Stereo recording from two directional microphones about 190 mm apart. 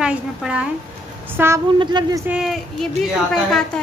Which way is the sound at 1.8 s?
20° right (ahead or behind).